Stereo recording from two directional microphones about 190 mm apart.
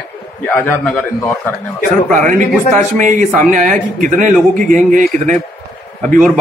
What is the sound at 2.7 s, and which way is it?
A man's voice, 40° right (ahead or behind).